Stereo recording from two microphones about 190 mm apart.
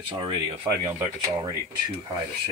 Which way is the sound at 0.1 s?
20° right (ahead or behind).